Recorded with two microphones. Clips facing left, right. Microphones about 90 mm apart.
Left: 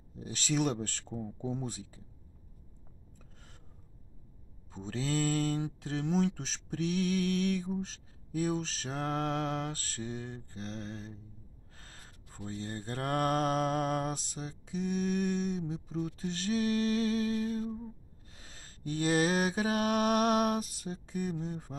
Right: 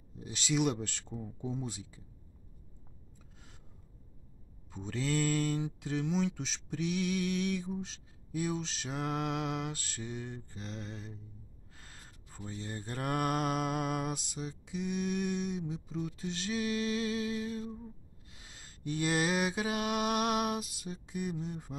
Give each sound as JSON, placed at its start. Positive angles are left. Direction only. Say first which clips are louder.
{"t": 0.2, "sound": "mantra", "louder": "even", "side_deg": 45}
{"t": 4.6, "sound": "mantra", "louder": "even", "side_deg": 35}
{"t": 6.0, "sound": "speech", "louder": "left 5 dB", "side_deg": 50}
{"t": 11.7, "sound": "gasp", "louder": "even", "side_deg": 40}
{"t": 12.4, "sound": "mantra", "louder": "left 2 dB", "side_deg": 40}
{"t": 15.6, "sound": "speech", "louder": "left 2 dB", "side_deg": 45}
{"t": 18.3, "sound": "mantra", "louder": "left 1 dB", "side_deg": 40}